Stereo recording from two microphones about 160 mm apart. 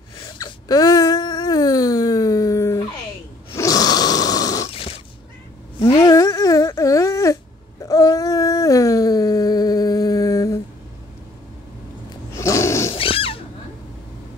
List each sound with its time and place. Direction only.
0.2 s wail: 30° left (ahead or behind)
3.5 s snoring: 20° left (ahead or behind)
4.6 s a sound: 35° left (ahead or behind)
5.8 s dog: 25° left (ahead or behind)
7.8 s a sound: 25° left (ahead or behind)
12.1 s snoring: 20° left (ahead or behind)
12.9 s cat: 35° left (ahead or behind)